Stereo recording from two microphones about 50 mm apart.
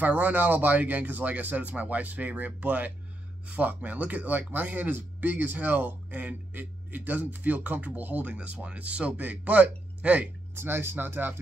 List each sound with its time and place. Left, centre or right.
0.0 s speech: right
10.5 s speech: right